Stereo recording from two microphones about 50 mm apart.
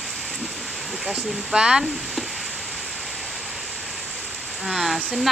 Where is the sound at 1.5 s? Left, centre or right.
Centre.